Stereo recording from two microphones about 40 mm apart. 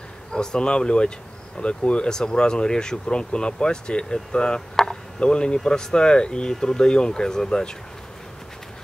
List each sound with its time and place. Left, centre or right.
0.3 s speech: centre
5.2 s speech: left